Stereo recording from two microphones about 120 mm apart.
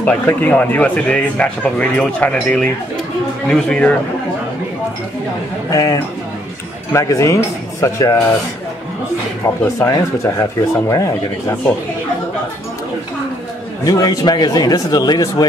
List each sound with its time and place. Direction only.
0.0 s speech: 15° left (ahead or behind)
5.7 s speech: 30° left (ahead or behind)
9.8 s speech: 25° left (ahead or behind)
13.8 s speech: 35° left (ahead or behind)